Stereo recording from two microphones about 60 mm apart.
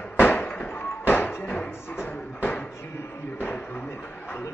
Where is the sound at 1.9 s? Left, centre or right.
Left.